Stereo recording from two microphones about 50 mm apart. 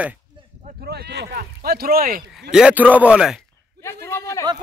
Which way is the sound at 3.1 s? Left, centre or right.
Centre.